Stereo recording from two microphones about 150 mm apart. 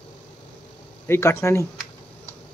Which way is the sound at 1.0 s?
15° left (ahead or behind).